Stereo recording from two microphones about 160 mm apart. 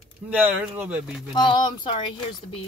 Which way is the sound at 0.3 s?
10° right (ahead or behind).